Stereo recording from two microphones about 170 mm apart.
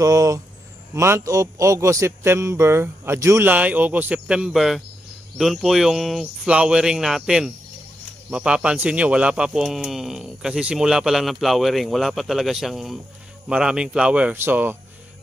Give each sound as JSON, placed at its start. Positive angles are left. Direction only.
{"t": 0.0, "sound": "a man's voice", "side_deg": -20}